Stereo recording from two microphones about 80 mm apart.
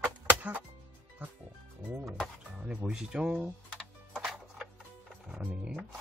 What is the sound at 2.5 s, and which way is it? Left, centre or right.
Speech, centre.